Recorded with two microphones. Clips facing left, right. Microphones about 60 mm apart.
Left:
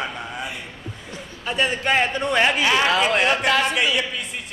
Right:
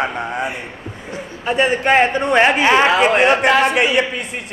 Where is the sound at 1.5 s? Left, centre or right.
Right.